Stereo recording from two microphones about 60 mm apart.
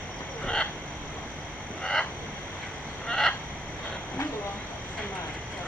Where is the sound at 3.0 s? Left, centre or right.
Centre.